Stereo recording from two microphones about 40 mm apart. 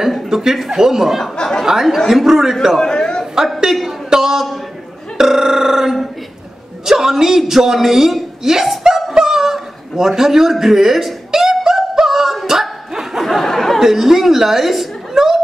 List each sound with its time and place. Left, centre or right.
0.3 s a man's voice: centre
1.3 s speech: centre
1.7 s a man's voice: centre
2.8 s chatter: left
3.4 s a man's voice: centre
4.1 s a sound: centre
6.9 s a woman's voice: centre
9.1 s a sound: centre
13.2 s a sound: centre
13.7 s a woman's voice: centre